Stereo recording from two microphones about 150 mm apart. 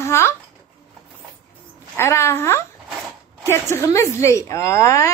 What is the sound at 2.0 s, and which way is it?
Speech, 15° left (ahead or behind).